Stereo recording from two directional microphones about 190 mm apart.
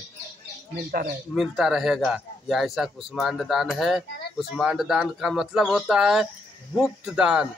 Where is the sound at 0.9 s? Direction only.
55° right (ahead or behind).